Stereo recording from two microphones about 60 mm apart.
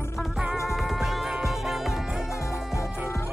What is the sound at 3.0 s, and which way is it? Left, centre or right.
Music, left.